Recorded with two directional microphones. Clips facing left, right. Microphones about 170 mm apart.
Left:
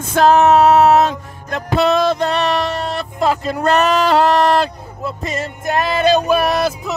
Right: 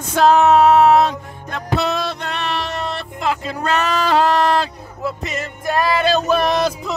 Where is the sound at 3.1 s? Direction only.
40° left (ahead or behind).